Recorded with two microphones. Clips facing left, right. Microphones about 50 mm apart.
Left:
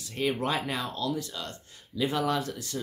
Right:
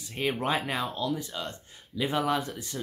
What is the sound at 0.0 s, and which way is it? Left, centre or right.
Speech, centre.